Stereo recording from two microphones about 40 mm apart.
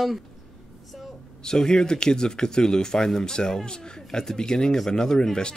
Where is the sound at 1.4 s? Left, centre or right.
Centre.